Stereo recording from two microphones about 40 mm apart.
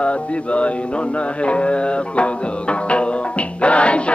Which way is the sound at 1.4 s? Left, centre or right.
Left.